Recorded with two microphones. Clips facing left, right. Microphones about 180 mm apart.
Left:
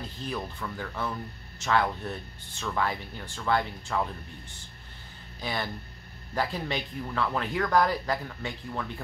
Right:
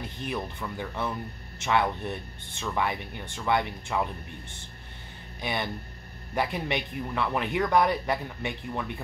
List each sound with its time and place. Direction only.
0.2 s speech: 20° right (ahead or behind)
5.4 s speech: 20° right (ahead or behind)